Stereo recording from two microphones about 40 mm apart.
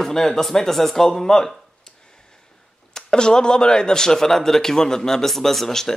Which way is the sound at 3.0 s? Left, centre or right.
Centre.